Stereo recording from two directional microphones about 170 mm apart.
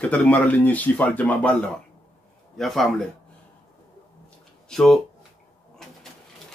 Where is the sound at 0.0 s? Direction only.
10° left (ahead or behind).